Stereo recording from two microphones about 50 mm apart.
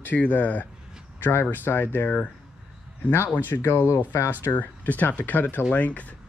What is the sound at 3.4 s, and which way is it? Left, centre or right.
Speech, left.